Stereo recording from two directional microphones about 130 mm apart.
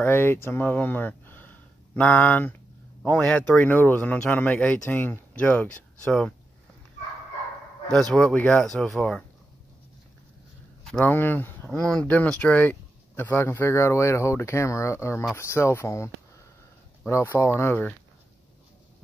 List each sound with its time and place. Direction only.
0.0 s speech: 15° left (ahead or behind)
7.9 s speech: 5° left (ahead or behind)
10.8 s a sound: 5° left (ahead or behind)
11.1 s speech: 15° left (ahead or behind)